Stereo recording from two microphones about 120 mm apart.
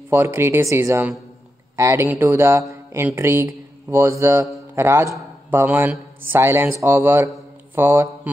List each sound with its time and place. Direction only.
0.1 s a man's voice: 20° right (ahead or behind)